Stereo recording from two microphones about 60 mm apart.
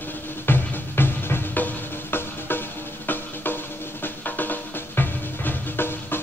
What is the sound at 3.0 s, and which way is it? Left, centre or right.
Drum, left.